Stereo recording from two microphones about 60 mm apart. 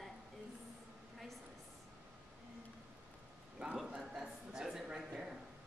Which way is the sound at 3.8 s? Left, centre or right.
Centre.